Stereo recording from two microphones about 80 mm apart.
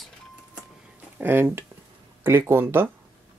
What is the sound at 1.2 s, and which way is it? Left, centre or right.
Speech, right.